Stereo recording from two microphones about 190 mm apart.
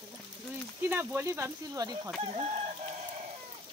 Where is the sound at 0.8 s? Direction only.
10° right (ahead or behind).